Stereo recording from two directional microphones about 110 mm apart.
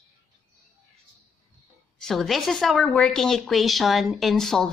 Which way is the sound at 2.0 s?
Centre (ahead or behind).